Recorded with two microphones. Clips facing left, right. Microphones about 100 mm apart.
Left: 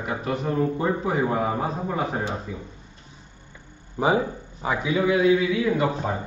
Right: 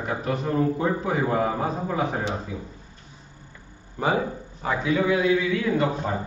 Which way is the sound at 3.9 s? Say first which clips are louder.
Left 2 dB; 20° left (ahead or behind).